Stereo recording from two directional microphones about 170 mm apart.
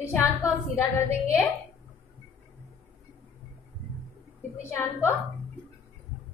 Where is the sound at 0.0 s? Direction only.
15° left (ahead or behind).